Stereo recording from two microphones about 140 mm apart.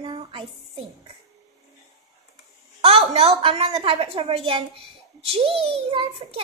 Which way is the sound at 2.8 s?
45° right (ahead or behind).